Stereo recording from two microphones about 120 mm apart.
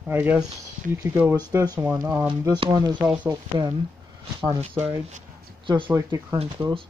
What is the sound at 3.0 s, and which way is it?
Speech, 15° right (ahead or behind).